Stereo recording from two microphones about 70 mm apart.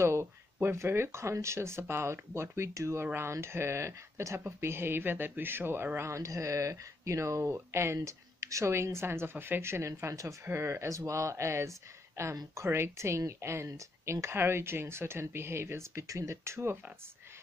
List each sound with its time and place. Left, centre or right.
0.0 s speech: right